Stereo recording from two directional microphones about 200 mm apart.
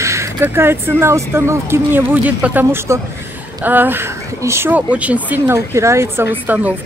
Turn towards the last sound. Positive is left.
turn(degrees=-10)  # may be behind; listen again after turning